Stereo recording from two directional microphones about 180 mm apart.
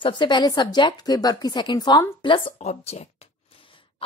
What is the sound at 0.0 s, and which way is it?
Speech, 25° left (ahead or behind).